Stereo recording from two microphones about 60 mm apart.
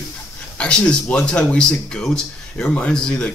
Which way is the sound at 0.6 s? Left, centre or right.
Centre.